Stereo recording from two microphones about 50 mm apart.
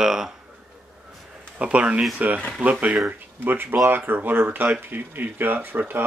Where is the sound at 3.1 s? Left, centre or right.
Right.